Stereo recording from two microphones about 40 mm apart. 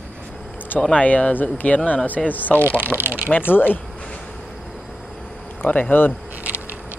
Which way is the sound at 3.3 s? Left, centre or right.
Left.